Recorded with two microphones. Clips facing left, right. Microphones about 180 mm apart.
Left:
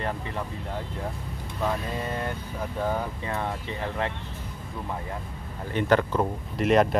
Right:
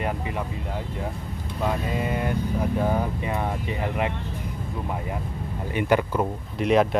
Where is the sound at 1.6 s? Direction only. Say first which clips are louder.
Right 3 dB; 10° right (ahead or behind).